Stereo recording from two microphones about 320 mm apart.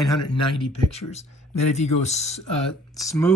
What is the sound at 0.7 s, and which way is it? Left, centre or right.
Speech, centre.